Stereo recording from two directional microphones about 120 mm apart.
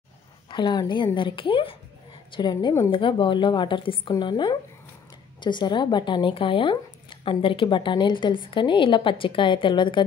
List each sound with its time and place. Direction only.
0.5 s speech: 40° left (ahead or behind)